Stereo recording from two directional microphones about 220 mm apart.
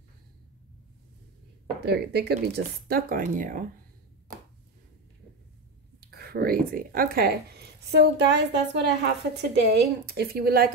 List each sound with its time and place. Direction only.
1.8 s speech: 50° right (ahead or behind)
5.9 s speech: 45° right (ahead or behind)